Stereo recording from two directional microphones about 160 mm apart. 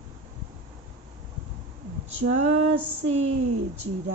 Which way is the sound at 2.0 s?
45° right (ahead or behind).